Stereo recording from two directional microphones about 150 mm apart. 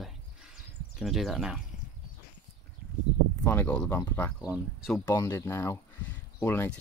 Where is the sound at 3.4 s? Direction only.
15° left (ahead or behind).